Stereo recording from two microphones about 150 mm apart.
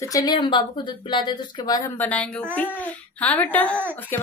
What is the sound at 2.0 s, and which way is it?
Speech, 10° left (ahead or behind).